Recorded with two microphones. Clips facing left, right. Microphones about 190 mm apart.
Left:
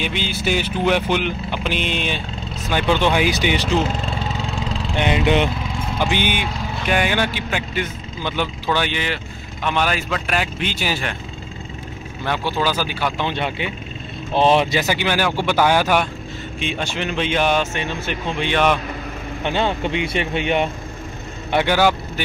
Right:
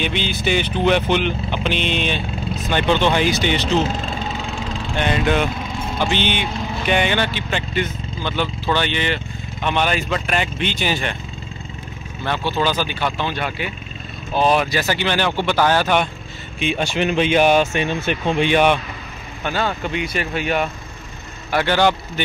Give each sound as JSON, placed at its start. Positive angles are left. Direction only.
{"t": 0.0, "sound": "speech", "side_deg": 5}
{"t": 4.9, "sound": "speech", "side_deg": 15}
{"t": 12.3, "sound": "speech", "side_deg": 10}
{"t": 13.3, "sound": "speech", "side_deg": 25}
{"t": 16.5, "sound": "speech", "side_deg": -10}
{"t": 19.4, "sound": "speech", "side_deg": 25}
{"t": 21.7, "sound": "speech", "side_deg": 5}